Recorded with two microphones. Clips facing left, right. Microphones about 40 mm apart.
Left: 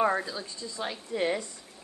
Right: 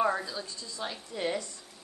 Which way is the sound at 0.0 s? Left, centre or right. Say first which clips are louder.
Left 2 dB; centre.